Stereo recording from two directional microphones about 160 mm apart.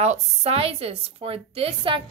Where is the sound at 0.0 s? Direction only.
40° right (ahead or behind).